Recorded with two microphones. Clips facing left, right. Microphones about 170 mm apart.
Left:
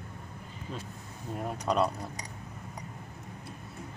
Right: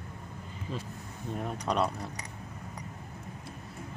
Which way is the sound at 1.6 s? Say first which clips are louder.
Left 2 dB; centre (ahead or behind).